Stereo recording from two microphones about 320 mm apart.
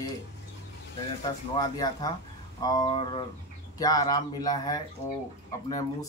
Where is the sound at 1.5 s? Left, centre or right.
Centre.